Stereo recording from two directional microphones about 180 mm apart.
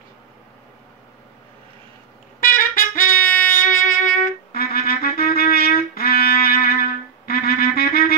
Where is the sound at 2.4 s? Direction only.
50° left (ahead or behind).